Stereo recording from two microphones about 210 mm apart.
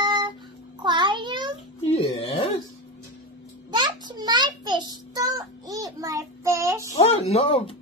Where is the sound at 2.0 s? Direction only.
25° left (ahead or behind).